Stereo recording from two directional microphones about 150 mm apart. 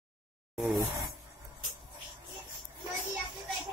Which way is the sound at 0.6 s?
5° right (ahead or behind).